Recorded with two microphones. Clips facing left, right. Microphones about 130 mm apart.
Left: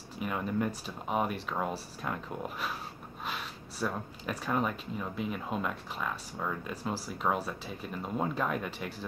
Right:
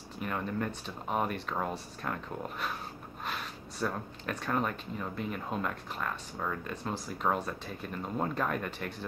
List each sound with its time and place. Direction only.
0.2 s speech: 10° left (ahead or behind)